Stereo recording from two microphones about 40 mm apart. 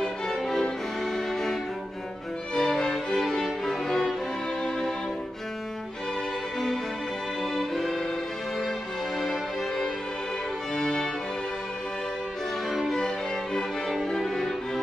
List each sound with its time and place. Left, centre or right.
0.3 s music: centre
7.4 s music: centre
9.2 s music: centre
10.7 s music: centre
12.6 s music: centre
13.0 s music: centre